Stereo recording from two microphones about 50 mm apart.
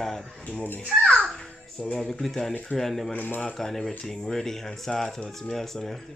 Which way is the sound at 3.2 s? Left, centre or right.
Left.